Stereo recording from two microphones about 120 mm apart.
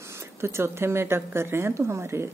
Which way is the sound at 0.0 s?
25° right (ahead or behind).